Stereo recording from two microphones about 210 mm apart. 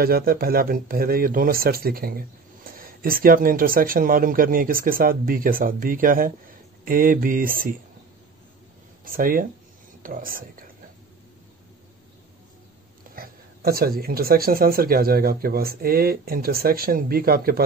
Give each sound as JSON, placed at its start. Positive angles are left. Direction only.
{"t": 0.0, "sound": "speech", "side_deg": -45}
{"t": 9.0, "sound": "speech", "side_deg": -45}
{"t": 13.1, "sound": "speech", "side_deg": -45}